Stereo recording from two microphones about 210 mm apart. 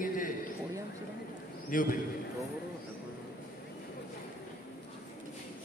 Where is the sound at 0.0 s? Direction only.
40° left (ahead or behind).